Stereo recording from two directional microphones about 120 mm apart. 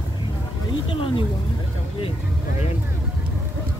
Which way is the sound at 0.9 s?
50° left (ahead or behind).